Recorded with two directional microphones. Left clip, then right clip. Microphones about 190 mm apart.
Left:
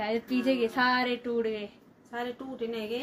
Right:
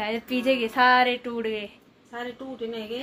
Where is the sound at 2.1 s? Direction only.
20° left (ahead or behind).